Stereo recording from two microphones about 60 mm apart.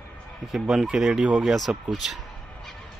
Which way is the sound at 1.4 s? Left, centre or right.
Centre.